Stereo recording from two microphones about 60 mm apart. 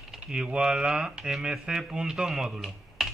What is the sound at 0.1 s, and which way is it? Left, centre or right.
Speech, centre.